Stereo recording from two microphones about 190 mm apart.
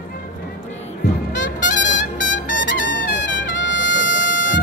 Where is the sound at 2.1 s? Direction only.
80° left.